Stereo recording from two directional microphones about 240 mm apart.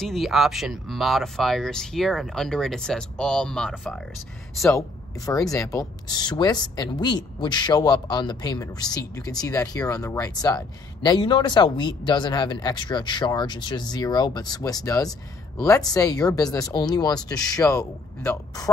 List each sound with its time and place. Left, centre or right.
0.0 s speech: centre
4.6 s speech: centre